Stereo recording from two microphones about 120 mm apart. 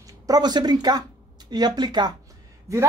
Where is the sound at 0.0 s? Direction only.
35° right (ahead or behind).